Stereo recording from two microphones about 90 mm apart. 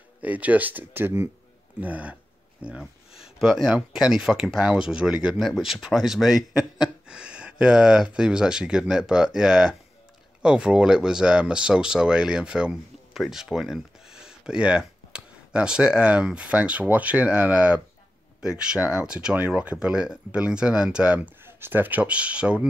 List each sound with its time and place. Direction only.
0.2 s speech: 15° right (ahead or behind)
2.8 s speech: 5° right (ahead or behind)